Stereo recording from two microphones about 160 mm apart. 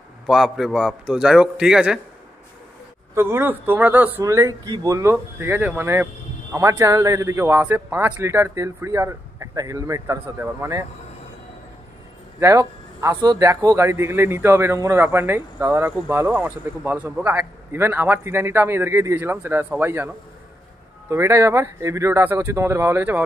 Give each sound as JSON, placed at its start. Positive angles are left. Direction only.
{"t": 0.3, "sound": "a man's voice", "side_deg": 0}
{"t": 3.2, "sound": "speech", "side_deg": -15}
{"t": 12.4, "sound": "speech", "side_deg": -20}
{"t": 21.1, "sound": "speech", "side_deg": -15}